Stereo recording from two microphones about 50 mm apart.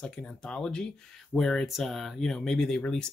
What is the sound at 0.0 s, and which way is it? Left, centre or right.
Speech, centre.